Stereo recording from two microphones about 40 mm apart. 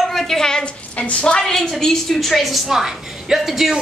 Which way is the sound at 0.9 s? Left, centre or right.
Left.